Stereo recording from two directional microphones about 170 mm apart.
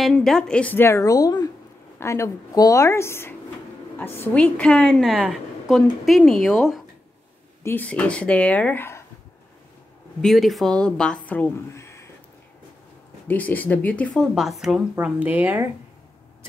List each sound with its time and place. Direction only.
0.0 s a woman's voice: 5° left (ahead or behind)
10.2 s a woman's voice: centre (ahead or behind)
11.2 s a sound: 10° left (ahead or behind)
13.3 s a woman's voice: 10° left (ahead or behind); by 15.7 s 10° right (ahead or behind)